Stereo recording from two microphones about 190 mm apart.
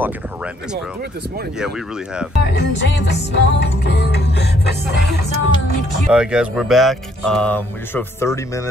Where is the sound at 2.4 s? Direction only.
60° left (ahead or behind).